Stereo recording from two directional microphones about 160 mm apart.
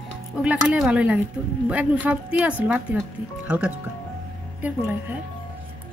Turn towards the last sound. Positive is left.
turn(degrees=-15)  # may be behind; listen again after turning